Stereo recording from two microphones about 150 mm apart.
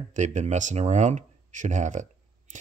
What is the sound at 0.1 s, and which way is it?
Speech, 55° right (ahead or behind).